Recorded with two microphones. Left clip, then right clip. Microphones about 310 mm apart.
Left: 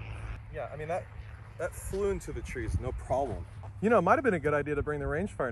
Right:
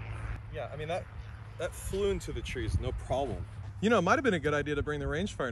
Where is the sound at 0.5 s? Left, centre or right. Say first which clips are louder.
Left 1 dB; centre.